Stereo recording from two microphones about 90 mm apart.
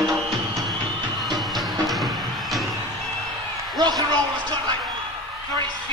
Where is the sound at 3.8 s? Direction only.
50° right (ahead or behind).